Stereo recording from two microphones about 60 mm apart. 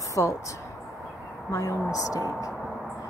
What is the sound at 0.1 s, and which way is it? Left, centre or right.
Speech, left.